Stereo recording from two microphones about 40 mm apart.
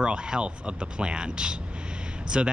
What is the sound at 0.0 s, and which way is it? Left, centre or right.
Speech, right.